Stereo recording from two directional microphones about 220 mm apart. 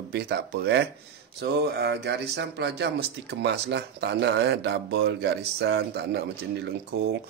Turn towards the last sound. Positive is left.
turn(degrees=-50)  # may be behind; listen again after turning